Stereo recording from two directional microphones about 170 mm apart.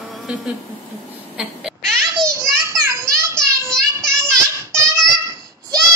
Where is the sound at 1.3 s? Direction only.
Centre (ahead or behind).